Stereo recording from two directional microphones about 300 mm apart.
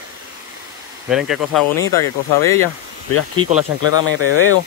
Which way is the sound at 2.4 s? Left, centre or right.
Centre.